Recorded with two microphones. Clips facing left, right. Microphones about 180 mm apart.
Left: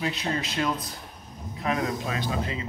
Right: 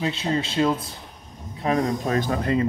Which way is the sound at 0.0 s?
30° right (ahead or behind).